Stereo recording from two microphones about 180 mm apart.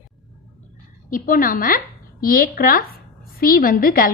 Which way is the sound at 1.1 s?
50° left (ahead or behind).